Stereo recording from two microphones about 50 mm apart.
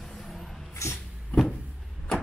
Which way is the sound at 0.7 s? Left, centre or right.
Left.